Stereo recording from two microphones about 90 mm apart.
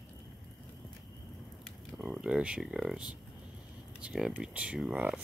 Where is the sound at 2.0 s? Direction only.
10° right (ahead or behind).